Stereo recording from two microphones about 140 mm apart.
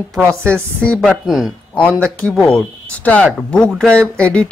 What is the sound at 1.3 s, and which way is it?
Speech, centre (ahead or behind).